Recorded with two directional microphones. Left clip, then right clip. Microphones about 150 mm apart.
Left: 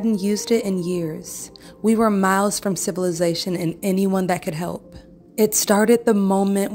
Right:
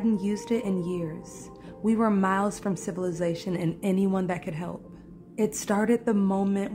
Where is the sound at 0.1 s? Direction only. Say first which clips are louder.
Left 8 dB; 30° left (ahead or behind).